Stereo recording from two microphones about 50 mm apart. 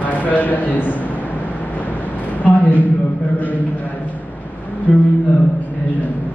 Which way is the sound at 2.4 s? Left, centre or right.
Left.